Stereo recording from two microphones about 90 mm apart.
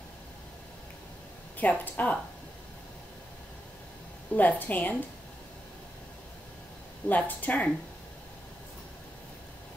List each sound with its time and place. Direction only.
1.6 s a woman's voice: 15° left (ahead or behind)
4.4 s a woman's voice: 20° left (ahead or behind)
7.1 s a woman's voice: 20° left (ahead or behind)